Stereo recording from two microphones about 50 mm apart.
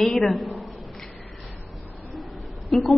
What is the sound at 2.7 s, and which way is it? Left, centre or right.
Speech, centre.